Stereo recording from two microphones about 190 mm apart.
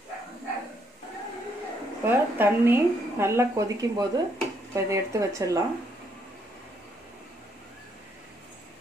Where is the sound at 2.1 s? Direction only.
10° right (ahead or behind).